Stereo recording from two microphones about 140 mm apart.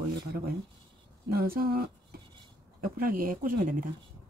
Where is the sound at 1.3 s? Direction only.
90° right.